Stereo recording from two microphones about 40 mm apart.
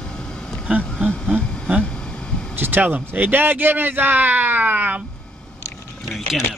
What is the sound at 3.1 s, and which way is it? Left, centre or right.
Speech, right.